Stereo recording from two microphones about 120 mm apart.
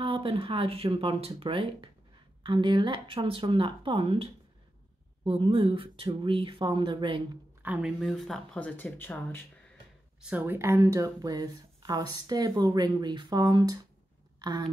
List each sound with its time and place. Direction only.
0.0 s speech: 45° right (ahead or behind)
7.6 s speech: 10° right (ahead or behind)
8.0 s speech: centre (ahead or behind)
8.5 s speech: 10° left (ahead or behind)
10.2 s speech: 15° right (ahead or behind); by 13.7 s 35° right (ahead or behind)